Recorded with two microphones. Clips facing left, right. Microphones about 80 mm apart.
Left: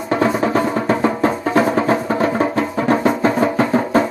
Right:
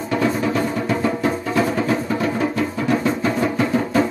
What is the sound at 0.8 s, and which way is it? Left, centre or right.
Music, left.